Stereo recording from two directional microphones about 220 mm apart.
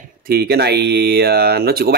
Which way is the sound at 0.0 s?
45° right (ahead or behind).